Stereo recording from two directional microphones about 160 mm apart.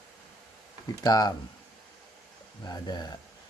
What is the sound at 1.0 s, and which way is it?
Speech, 25° left (ahead or behind).